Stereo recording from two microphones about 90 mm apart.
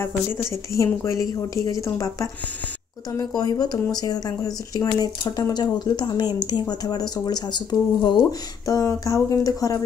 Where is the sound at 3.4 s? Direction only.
45° left (ahead or behind).